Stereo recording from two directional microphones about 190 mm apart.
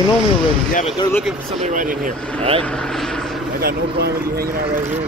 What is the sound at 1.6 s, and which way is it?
Speech, 45° right (ahead or behind).